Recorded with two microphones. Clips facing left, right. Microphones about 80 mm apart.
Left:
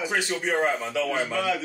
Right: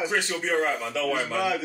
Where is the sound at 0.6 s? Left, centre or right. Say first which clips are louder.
Left 2 dB; left.